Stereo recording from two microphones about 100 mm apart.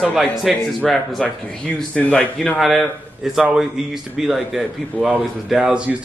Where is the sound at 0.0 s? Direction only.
Centre (ahead or behind).